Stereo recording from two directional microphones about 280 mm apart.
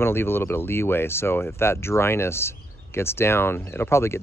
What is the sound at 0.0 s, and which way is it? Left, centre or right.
Speech, centre.